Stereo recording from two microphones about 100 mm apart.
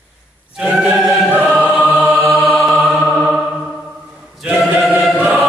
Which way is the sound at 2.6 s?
5° right (ahead or behind).